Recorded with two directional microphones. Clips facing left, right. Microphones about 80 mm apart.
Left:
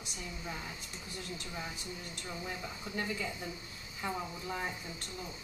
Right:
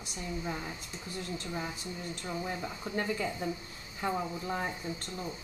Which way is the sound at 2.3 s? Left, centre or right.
Right.